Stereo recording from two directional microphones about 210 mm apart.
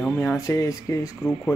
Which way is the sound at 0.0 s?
10° left (ahead or behind).